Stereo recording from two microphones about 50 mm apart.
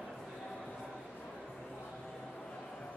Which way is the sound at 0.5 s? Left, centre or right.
Centre.